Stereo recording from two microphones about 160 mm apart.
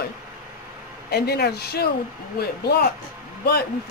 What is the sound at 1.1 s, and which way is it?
Speech, 85° left.